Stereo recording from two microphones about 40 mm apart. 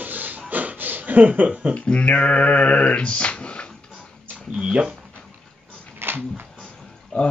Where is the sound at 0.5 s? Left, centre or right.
Right.